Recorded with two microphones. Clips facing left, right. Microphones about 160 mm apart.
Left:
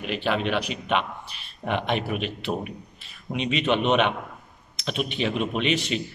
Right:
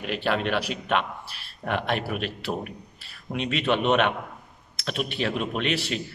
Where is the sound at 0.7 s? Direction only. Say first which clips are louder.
Even; 15° left (ahead or behind).